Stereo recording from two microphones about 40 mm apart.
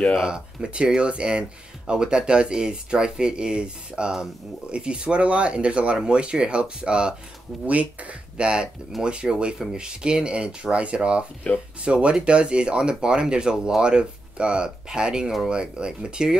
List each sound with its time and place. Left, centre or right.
0.2 s speech: right
7.6 s speech: right